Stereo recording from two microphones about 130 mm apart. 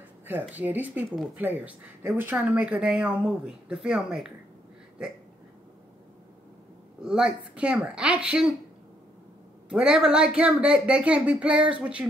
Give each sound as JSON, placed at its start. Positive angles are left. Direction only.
{"t": 0.3, "sound": "speech", "side_deg": -15}
{"t": 7.0, "sound": "speech", "side_deg": -5}
{"t": 9.7, "sound": "speech", "side_deg": -5}